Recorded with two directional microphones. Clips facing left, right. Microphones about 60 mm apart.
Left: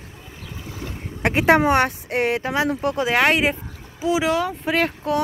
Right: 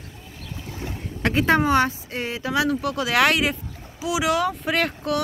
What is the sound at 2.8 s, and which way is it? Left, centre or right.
Speech, left.